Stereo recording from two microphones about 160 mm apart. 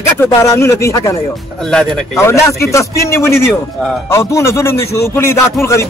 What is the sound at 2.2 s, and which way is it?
A man's voice, 20° left (ahead or behind).